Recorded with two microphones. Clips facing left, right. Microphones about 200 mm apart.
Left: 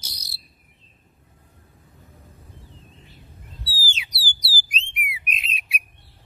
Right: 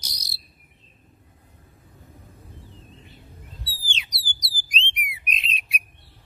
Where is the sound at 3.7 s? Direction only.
5° left (ahead or behind).